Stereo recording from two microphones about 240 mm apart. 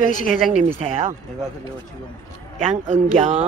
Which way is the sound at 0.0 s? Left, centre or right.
Left.